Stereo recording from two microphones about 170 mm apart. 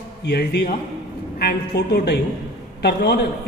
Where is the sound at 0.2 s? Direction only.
75° left (ahead or behind).